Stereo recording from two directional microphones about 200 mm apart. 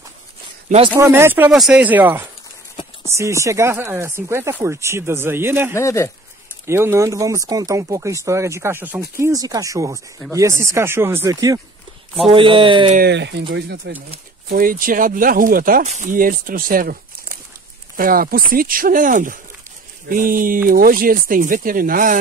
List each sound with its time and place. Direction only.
0.9 s speech: 10° right (ahead or behind)
5.8 s speech: 15° left (ahead or behind)
6.6 s speech: 10° right (ahead or behind)
12.9 s speech: 55° right (ahead or behind)
14.5 s speech: 45° right (ahead or behind)